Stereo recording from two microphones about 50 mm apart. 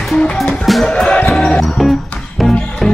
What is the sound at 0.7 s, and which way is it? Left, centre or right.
Music, centre.